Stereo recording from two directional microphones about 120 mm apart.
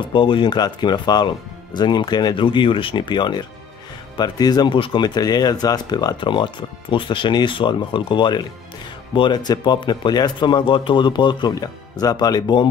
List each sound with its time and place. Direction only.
0.1 s speech: 45° left (ahead or behind)
4.7 s speech: 45° left (ahead or behind)